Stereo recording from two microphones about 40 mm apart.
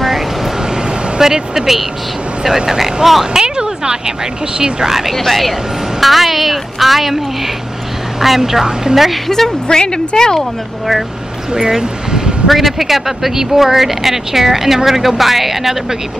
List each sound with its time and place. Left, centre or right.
1.1 s speech: centre
3.4 s a sound: centre
4.6 s speech: centre
4.8 s speech: centre
5.1 s a woman's voice: centre
8.2 s a woman's voice: centre
9.3 s speech: centre
11.5 s speech: centre
12.4 s speech: centre